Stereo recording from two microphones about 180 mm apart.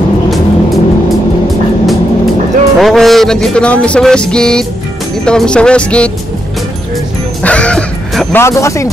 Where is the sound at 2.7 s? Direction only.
Centre (ahead or behind).